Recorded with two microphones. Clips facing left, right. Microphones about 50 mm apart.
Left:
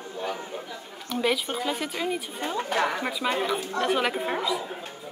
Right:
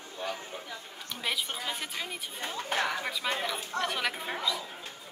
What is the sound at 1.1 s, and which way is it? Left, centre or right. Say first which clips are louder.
A woman's voice: left 8 dB; centre.